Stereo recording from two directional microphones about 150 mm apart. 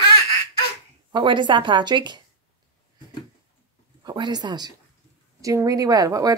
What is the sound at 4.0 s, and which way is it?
Speech, 25° right (ahead or behind).